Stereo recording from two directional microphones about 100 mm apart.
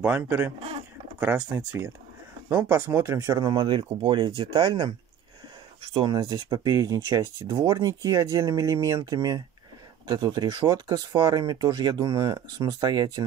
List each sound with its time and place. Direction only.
0.0 s speech: 20° right (ahead or behind)
3.3 s speech: 50° right (ahead or behind)
5.9 s speech: 45° right (ahead or behind)